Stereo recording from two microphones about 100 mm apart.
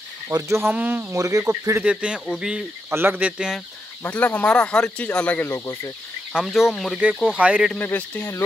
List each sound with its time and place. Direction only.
0.3 s cricket: 25° right (ahead or behind)
1.1 s speech: 35° right (ahead or behind)
1.4 s cricket: 30° right (ahead or behind)
1.8 s speech: 10° right (ahead or behind)
2.9 s speech: 20° right (ahead or behind)
4.0 s speech: 20° left (ahead or behind)
5.5 s speech: 30° left (ahead or behind)
6.3 s speech: 5° right (ahead or behind)
7.3 s speech: 10° right (ahead or behind)
7.7 s speech: 15° left (ahead or behind)